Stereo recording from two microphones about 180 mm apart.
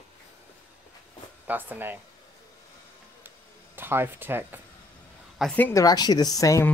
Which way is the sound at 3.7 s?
10° right (ahead or behind).